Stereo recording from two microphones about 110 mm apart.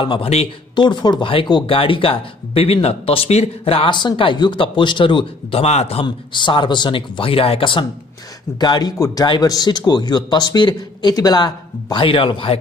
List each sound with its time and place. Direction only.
0.0 s speech: 50° left (ahead or behind); by 6.0 s 70° left (ahead or behind)
6.0 s speech: 45° left (ahead or behind)
8.5 s speech: 40° left (ahead or behind)